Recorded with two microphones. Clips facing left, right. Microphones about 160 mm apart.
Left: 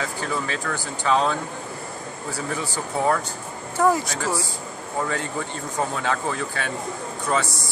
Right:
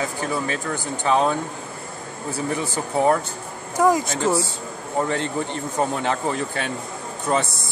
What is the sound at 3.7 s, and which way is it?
A man's voice, 15° right (ahead or behind).